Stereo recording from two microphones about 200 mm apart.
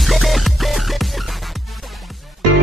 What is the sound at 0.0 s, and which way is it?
Music, centre (ahead or behind).